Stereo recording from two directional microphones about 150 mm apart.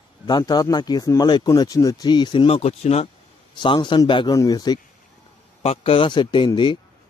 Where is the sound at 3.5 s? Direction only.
30° left (ahead or behind).